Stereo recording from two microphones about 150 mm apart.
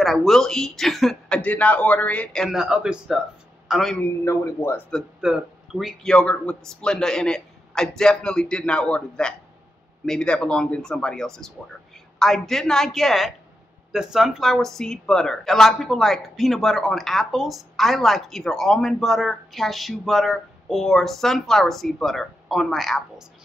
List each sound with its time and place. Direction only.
0.0 s a woman's voice: centre (ahead or behind)
4.0 s speech: 20° left (ahead or behind)
5.2 s a woman's voice: 5° right (ahead or behind)